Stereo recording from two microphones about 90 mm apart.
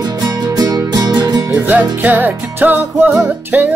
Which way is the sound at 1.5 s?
20° right (ahead or behind).